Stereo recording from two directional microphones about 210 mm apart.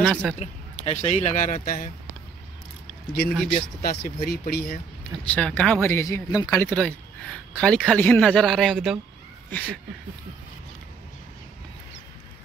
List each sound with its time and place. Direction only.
0.0 s speech: 5° left (ahead or behind)
0.4 s speech: 35° left (ahead or behind)
3.1 s speech: 45° left (ahead or behind)
5.2 s speech: 5° left (ahead or behind)